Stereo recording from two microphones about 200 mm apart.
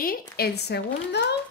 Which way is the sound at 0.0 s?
50° left (ahead or behind).